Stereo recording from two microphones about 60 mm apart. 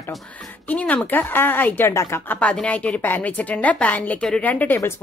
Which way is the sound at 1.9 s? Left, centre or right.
Left.